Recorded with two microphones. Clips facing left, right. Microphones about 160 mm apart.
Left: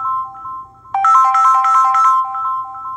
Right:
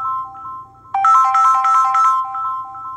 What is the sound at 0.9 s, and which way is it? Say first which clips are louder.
Ringtone: left 2 dB; 45° left (ahead or behind).